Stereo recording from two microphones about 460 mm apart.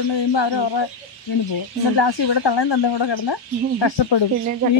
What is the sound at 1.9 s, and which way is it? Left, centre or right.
Speech, left.